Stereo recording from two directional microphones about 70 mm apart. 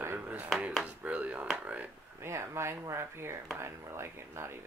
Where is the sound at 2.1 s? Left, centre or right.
Right.